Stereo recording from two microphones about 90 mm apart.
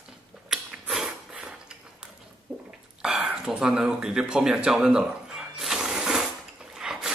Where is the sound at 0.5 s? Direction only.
5° right (ahead or behind).